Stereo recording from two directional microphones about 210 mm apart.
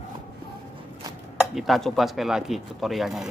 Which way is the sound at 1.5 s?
Centre (ahead or behind).